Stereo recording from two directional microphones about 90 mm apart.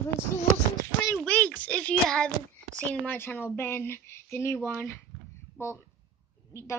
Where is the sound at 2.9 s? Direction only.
20° left (ahead or behind).